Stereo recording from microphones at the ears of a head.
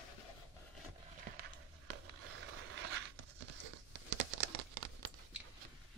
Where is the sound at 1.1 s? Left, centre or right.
Right.